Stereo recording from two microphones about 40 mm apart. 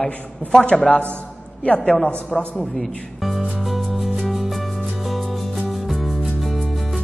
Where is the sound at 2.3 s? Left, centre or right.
Centre.